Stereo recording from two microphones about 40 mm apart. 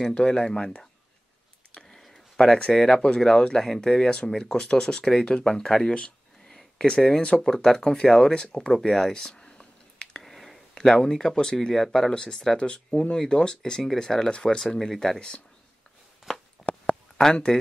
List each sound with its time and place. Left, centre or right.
0.0 s speech: centre
1.8 s a sound: centre
2.3 s speech: centre
3.9 s speech: left
7.3 s speech: centre
8.9 s a sound: centre
10.2 s a sound: centre
10.7 s speech: centre
12.1 s speech: centre
12.5 s speech: left
14.6 s speech: centre
15.1 s speech: left
16.2 s a sound: centre
17.2 s speech: centre